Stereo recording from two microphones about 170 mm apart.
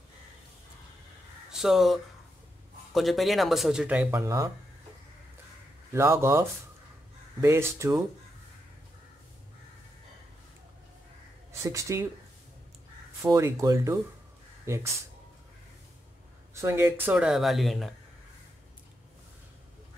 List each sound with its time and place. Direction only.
1.5 s speech: centre (ahead or behind)
5.9 s speech: 15° right (ahead or behind)
11.6 s speech: 15° right (ahead or behind)
13.2 s speech: 20° right (ahead or behind)
16.5 s speech: 15° right (ahead or behind); by 17.9 s centre (ahead or behind)